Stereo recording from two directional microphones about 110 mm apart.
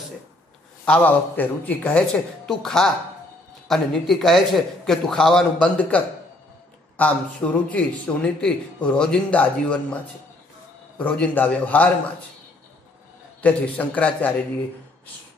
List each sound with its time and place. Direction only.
0.8 s a man's voice: 15° left (ahead or behind)
11.0 s speech: 10° left (ahead or behind)
13.4 s speech: 15° left (ahead or behind)